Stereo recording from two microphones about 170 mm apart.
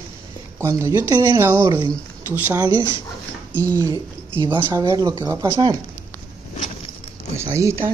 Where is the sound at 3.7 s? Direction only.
25° right (ahead or behind).